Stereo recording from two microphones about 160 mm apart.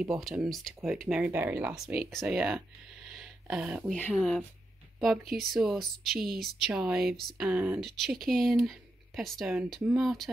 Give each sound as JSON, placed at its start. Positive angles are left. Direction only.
{"t": 0.0, "sound": "speech", "side_deg": 0}
{"t": 3.1, "sound": "a sound", "side_deg": -5}
{"t": 4.0, "sound": "speech", "side_deg": 0}
{"t": 7.8, "sound": "speech", "side_deg": 0}